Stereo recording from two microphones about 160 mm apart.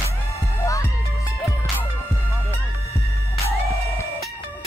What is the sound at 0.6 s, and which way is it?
Music, 20° left (ahead or behind).